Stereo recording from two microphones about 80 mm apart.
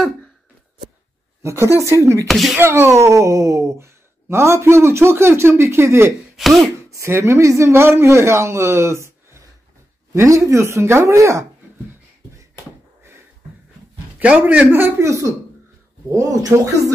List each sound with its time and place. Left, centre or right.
1.4 s speech: right
2.2 s speech: centre
2.6 s speech: right
6.3 s speech: centre
6.9 s speech: right
14.2 s a man's voice: centre
14.7 s speech: right